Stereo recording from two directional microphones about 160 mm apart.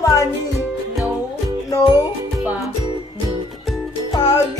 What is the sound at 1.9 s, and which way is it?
Music, 10° right (ahead or behind).